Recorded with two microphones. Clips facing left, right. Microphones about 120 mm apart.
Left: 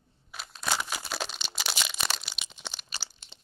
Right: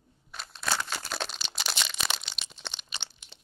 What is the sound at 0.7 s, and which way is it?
Crumpling, 10° left (ahead or behind).